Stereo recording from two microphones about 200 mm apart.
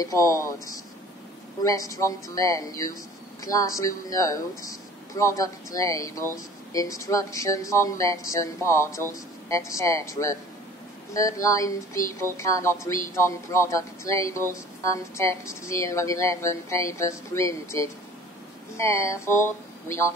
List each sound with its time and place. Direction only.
0.0 s speech: 15° left (ahead or behind)
1.6 s speech: 15° left (ahead or behind)